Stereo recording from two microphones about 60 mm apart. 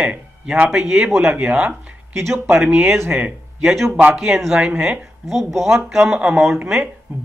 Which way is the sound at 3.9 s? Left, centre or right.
Right.